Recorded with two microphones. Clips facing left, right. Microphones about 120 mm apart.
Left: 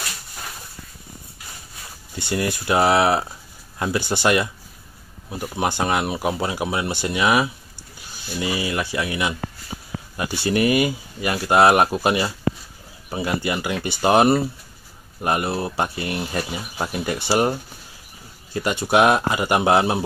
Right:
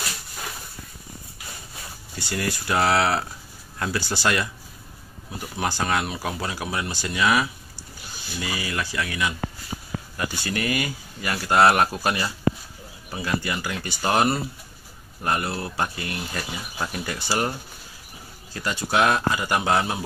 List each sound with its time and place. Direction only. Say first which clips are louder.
2.1 s speech: left 4 dB; 20° left (ahead or behind)